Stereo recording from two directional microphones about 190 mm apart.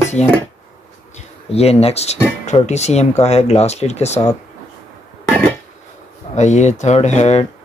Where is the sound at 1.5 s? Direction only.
35° left (ahead or behind).